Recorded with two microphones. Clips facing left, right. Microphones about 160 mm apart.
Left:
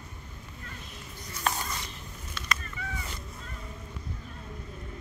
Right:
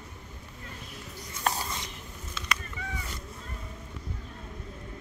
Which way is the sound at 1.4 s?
30° right (ahead or behind).